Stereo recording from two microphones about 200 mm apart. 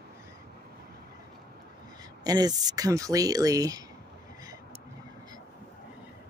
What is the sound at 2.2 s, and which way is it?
Speech, 20° right (ahead or behind).